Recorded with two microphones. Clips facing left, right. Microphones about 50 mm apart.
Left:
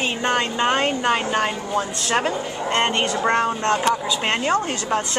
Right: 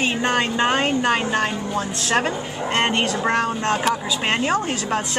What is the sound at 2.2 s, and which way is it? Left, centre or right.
A woman's voice, centre.